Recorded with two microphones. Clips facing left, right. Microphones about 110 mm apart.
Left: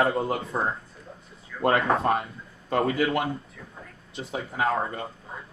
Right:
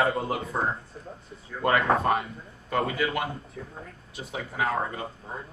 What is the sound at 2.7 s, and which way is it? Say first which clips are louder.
Speech: left 3 dB; 30° left (ahead or behind).